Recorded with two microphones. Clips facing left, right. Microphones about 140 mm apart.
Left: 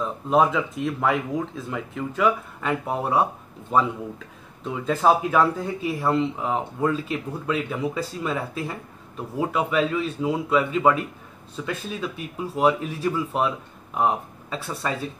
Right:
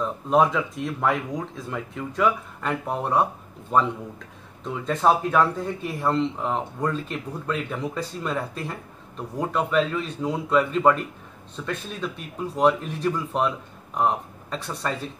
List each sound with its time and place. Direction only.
0.0 s speech: centre (ahead or behind)